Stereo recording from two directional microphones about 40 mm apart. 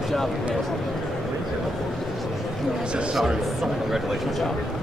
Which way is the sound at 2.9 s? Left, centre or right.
Right.